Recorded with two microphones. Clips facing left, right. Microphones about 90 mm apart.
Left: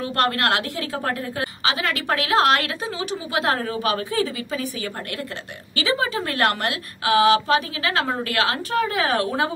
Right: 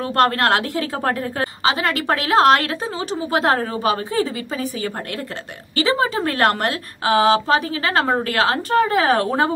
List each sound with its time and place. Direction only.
0.1 s a woman's voice: 40° right (ahead or behind)
5.8 s a woman's voice: 40° right (ahead or behind)